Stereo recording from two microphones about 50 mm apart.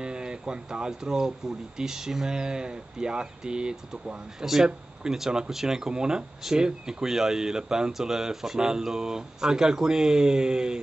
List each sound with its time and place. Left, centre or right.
0.0 s speech: centre